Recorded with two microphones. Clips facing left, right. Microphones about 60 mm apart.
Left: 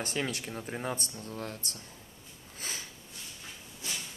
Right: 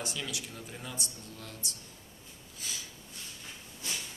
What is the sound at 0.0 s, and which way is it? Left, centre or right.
Speech, left.